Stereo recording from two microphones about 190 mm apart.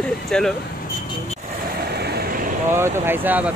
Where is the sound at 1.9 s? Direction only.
55° right (ahead or behind).